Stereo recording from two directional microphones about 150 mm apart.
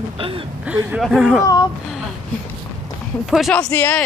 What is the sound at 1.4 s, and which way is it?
Speech, 25° left (ahead or behind).